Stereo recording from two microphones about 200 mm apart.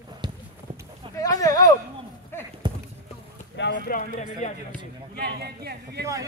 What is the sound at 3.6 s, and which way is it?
Speech, 60° left (ahead or behind).